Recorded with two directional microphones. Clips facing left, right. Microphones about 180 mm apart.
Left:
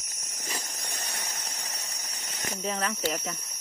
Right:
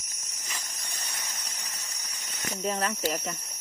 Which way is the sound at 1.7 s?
35° left (ahead or behind).